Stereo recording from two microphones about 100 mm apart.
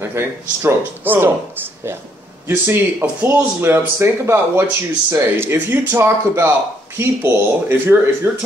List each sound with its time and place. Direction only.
0.0 s speech: 25° right (ahead or behind)